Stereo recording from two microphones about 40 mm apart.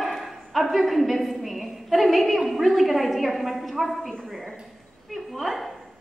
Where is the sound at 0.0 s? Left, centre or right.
Centre.